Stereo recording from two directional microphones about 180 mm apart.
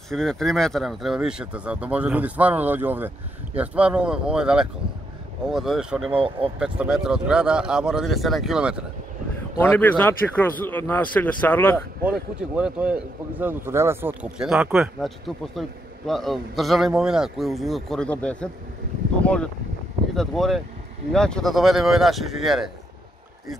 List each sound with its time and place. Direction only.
0.1 s speech: centre (ahead or behind)
6.1 s speech: 30° right (ahead or behind)
6.6 s speech: 5° right (ahead or behind)
9.6 s a man's voice: 10° left (ahead or behind)
12.0 s speech: 5° right (ahead or behind)
14.4 s speech: 5° right (ahead or behind)